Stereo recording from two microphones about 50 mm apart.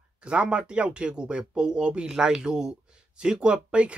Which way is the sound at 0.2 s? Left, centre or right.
Right.